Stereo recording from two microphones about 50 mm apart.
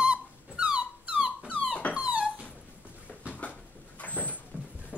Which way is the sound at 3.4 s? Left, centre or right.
Left.